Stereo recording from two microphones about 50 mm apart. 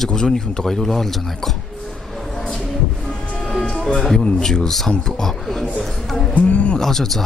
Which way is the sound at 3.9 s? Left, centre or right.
Centre.